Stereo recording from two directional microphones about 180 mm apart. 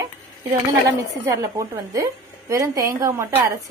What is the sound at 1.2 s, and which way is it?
A woman's voice, 15° right (ahead or behind).